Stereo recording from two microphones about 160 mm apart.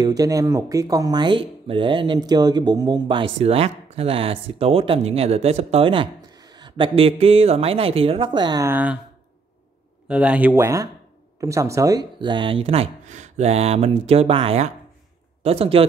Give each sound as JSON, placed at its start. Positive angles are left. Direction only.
{"t": 0.0, "sound": "speech", "side_deg": -25}
{"t": 8.6, "sound": "speech", "side_deg": -10}
{"t": 10.0, "sound": "speech", "side_deg": -5}